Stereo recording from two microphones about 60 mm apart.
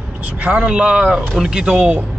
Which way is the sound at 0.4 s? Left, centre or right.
Centre.